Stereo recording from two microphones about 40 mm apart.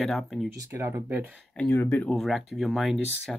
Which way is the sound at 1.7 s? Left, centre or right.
Left.